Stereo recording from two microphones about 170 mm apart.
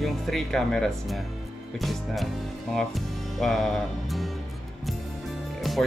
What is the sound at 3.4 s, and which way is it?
Speech, centre (ahead or behind).